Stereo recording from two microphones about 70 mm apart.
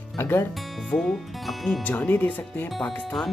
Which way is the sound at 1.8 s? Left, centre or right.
Left.